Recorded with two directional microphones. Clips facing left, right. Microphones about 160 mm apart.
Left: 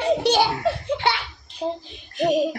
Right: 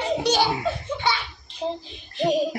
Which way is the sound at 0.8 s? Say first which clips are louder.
Left 2 dB; 60° left (ahead or behind).